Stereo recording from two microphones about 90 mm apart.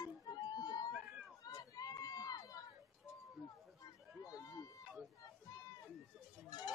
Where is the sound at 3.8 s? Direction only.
40° left (ahead or behind).